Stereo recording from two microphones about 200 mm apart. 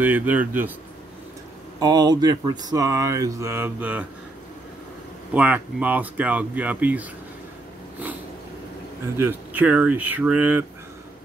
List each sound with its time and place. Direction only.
0.0 s speech: 10° right (ahead or behind)
1.8 s speech: 20° right (ahead or behind)
5.3 s speech: 5° right (ahead or behind)
9.1 s speech: 10° right (ahead or behind)